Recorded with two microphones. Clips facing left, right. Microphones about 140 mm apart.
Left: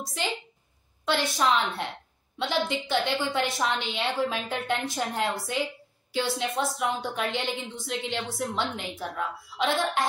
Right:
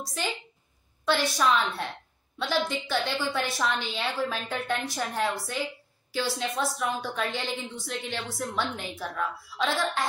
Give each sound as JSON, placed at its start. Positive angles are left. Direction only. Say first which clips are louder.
{"t": 1.0, "sound": "a woman's voice", "louder": "even", "side_deg": 20}